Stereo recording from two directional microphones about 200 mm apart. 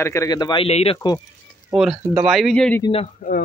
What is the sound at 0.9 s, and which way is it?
Speech, 15° left (ahead or behind).